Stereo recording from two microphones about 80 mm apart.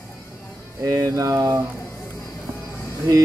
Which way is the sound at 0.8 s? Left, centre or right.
Right.